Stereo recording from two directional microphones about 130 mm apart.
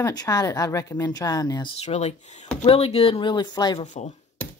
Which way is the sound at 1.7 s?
60° left (ahead or behind).